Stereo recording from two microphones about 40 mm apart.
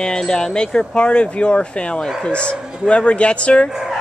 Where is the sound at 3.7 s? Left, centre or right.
Centre.